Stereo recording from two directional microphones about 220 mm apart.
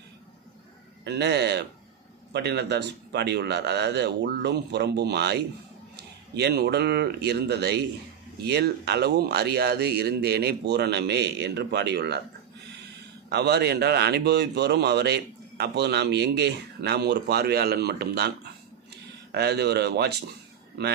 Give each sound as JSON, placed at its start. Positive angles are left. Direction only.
{"t": 1.0, "sound": "speech", "side_deg": -50}
{"t": 13.3, "sound": "speech", "side_deg": -50}